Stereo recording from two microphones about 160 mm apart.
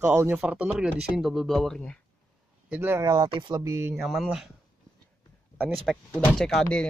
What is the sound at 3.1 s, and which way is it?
Speech, 30° right (ahead or behind).